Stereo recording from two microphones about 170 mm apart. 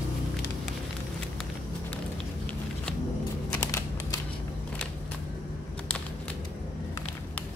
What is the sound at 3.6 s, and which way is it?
Typing, 15° left (ahead or behind).